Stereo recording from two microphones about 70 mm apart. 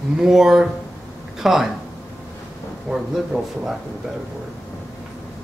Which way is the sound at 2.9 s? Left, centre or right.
Centre.